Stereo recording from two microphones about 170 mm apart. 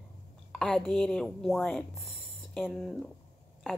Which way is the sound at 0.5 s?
5° left (ahead or behind).